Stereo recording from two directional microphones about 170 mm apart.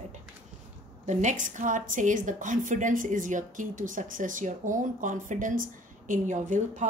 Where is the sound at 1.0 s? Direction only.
45° right (ahead or behind).